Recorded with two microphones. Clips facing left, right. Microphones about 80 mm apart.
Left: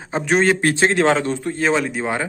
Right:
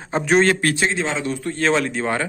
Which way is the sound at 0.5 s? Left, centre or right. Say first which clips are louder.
Left 2 dB; left.